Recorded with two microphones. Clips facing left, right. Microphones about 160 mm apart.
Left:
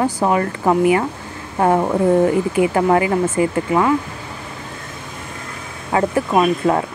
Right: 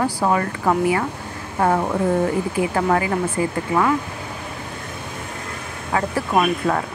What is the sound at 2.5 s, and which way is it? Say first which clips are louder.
Speech: left 4 dB; 20° left (ahead or behind).